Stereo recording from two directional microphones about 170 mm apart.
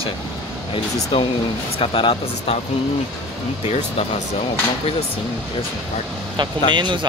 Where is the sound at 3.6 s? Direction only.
35° left (ahead or behind).